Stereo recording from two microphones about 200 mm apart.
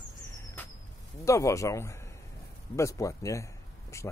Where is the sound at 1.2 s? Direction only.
15° left (ahead or behind).